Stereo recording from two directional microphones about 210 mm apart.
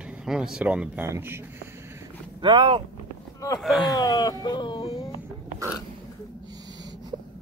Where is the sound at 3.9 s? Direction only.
20° left (ahead or behind).